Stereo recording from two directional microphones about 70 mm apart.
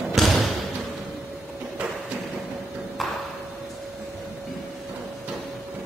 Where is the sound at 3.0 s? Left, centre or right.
Centre.